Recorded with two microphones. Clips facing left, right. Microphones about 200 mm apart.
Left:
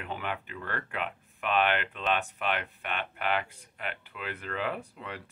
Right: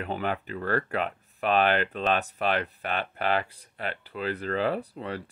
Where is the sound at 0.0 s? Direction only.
40° right (ahead or behind).